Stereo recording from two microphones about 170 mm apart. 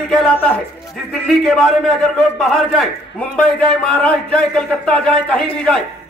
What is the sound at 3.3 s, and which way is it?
Speech, 5° left (ahead or behind).